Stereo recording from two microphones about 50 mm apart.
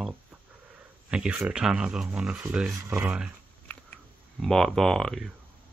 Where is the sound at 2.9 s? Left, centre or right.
Right.